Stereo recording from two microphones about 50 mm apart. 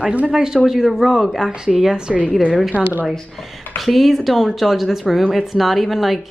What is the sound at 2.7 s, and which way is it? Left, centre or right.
Speech, right.